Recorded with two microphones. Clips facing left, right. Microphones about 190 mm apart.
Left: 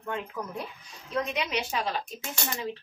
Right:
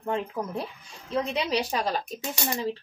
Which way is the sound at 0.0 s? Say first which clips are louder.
Right 5 dB; 30° right (ahead or behind).